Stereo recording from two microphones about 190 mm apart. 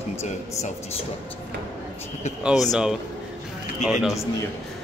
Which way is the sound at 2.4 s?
Centre (ahead or behind).